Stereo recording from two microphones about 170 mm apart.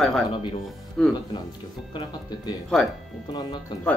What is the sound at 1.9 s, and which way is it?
Speech, 25° left (ahead or behind).